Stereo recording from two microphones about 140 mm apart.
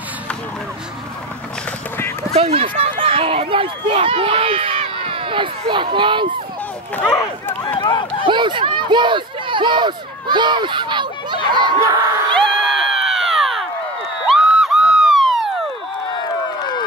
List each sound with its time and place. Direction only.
2.3 s speech: 45° right (ahead or behind)
7.0 s speech: 15° left (ahead or behind)
7.8 s speech: 35° left (ahead or behind)
8.2 s speech: 35° right (ahead or behind)
12.4 s crowd: centre (ahead or behind)
14.2 s a sound: 5° right (ahead or behind)